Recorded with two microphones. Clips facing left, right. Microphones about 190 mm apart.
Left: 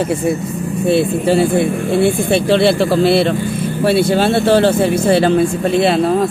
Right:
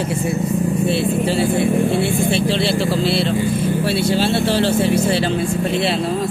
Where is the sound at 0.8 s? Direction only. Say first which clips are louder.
Left 10 dB; 50° left (ahead or behind).